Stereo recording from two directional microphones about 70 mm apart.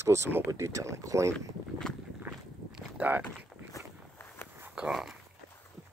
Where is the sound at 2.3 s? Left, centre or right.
Centre.